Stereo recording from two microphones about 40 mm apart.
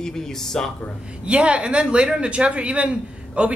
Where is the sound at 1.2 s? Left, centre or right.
Right.